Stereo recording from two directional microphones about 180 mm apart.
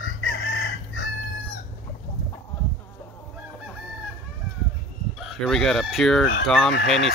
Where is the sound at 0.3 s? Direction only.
85° left.